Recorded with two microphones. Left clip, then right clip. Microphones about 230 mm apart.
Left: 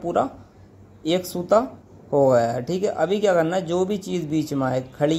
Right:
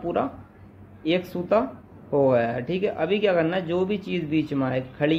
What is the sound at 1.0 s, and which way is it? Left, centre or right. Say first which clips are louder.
A man's voice: left 2 dB; centre.